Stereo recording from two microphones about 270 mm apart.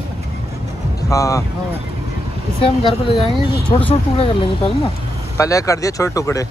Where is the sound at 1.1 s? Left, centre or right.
Centre.